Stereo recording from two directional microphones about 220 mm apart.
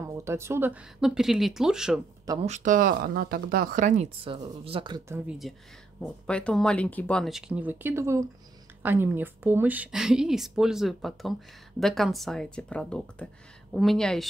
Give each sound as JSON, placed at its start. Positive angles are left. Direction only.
{"t": 0.0, "sound": "a woman's voice", "side_deg": -15}
{"t": 2.4, "sound": "speech", "side_deg": -35}
{"t": 5.9, "sound": "a woman's voice", "side_deg": 0}